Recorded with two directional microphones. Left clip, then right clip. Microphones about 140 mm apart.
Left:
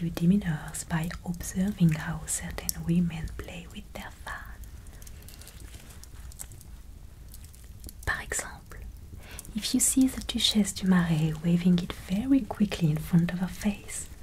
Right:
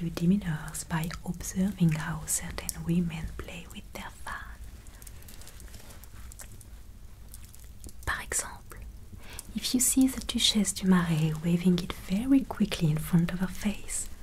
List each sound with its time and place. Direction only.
0.0 s speech: 35° left (ahead or behind)
8.0 s speech: 30° left (ahead or behind)